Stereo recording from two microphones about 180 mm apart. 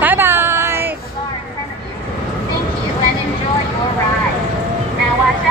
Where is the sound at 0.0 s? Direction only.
10° right (ahead or behind).